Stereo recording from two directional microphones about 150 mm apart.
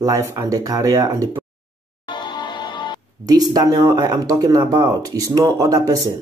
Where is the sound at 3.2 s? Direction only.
25° right (ahead or behind).